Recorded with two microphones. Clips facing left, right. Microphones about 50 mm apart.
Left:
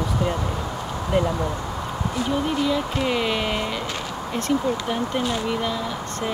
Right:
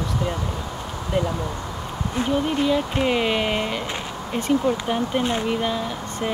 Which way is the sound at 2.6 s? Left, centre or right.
Centre.